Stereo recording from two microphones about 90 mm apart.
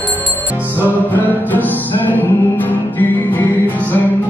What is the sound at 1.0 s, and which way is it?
Music, 20° left (ahead or behind).